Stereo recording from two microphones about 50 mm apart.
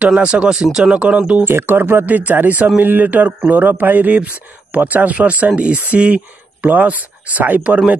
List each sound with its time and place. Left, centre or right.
0.2 s speech: right
1.4 s speech: right